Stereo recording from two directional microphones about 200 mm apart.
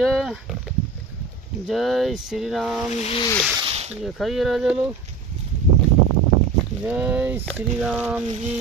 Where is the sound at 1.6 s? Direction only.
Centre (ahead or behind).